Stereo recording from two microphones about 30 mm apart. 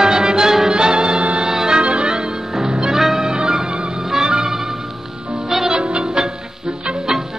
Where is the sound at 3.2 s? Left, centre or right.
Right; by 5.7 s centre.